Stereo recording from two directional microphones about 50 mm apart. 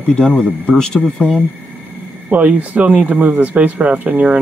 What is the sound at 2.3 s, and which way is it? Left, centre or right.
Speech, right.